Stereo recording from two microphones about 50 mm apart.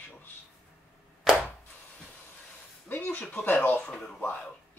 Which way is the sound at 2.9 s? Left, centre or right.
Left.